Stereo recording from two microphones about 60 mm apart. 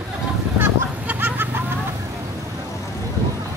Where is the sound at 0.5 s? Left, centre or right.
Right.